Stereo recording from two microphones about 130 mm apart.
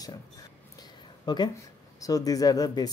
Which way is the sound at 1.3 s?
30° left (ahead or behind).